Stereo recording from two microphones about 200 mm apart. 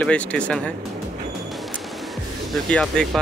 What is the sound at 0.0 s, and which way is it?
Speech, 5° left (ahead or behind).